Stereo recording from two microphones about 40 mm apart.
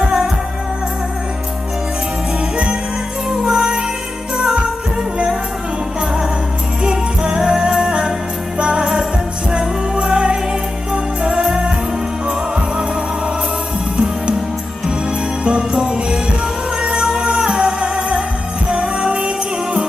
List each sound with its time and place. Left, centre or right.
3.3 s music: centre
6.8 s music: centre
15.4 s jingle bell: right
16.8 s music: right